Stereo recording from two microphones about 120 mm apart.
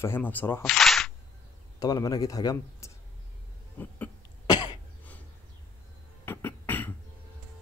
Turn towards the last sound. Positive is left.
turn(degrees=15)  # may be behind; listen again after turning